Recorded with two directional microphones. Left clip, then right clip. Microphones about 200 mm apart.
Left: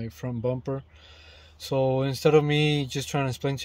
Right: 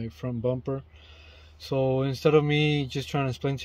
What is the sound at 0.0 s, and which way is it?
Speech, 20° left (ahead or behind).